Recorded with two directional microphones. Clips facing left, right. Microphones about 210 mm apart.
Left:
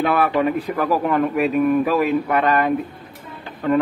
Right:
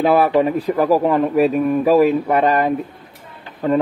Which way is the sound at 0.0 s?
30° right (ahead or behind).